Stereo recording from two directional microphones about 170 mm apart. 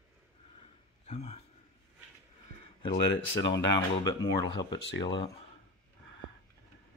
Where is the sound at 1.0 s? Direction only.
40° left (ahead or behind).